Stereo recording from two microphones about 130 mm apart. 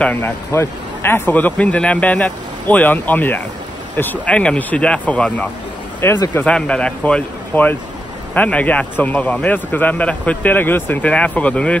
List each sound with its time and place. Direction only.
0.0 s speech: 15° left (ahead or behind)
5.9 s speech: 25° left (ahead or behind)
6.4 s speech: 10° left (ahead or behind)